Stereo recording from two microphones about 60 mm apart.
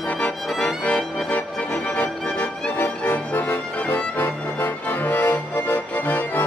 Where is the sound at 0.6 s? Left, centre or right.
Left.